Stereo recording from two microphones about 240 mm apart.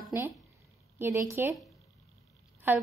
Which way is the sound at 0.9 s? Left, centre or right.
Centre.